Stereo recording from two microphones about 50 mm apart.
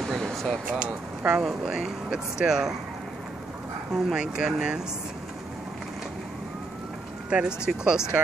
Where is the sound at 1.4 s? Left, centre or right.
Centre.